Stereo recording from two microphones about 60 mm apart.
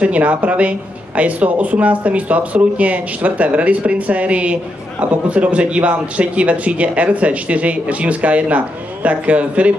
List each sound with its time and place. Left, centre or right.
0.0 s a man's voice: right